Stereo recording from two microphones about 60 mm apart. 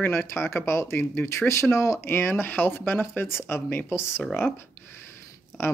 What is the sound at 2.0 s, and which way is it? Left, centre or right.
Speech, left.